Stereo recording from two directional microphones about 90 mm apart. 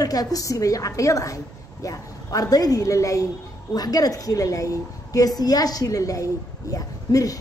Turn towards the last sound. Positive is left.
turn(degrees=40)  # may be behind; listen again after turning